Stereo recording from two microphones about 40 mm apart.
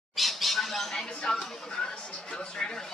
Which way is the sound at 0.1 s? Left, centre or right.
Centre.